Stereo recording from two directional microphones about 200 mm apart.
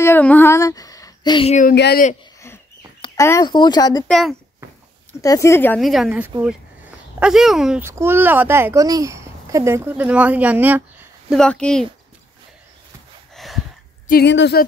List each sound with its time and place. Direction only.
0.0 s a sound: 10° left (ahead or behind)
1.5 s speech: 40° left (ahead or behind)
1.8 s speech: 55° left (ahead or behind)
3.0 s speech: 15° left (ahead or behind)
4.1 s speech: centre (ahead or behind)
5.2 s speech: 15° left (ahead or behind)
5.8 s speech: centre (ahead or behind)
11.3 s speech: 5° left (ahead or behind)
13.3 s a sound: centre (ahead or behind)
14.0 s a woman's voice: 55° left (ahead or behind)